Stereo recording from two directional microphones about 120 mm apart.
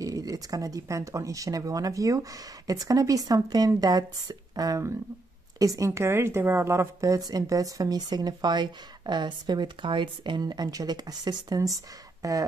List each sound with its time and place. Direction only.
0.0 s a woman's voice: 30° right (ahead or behind)